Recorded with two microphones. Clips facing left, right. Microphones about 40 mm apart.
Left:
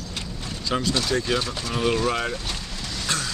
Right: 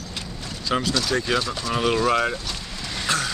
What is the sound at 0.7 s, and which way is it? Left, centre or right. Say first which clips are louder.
Speech: right 1 dB; centre.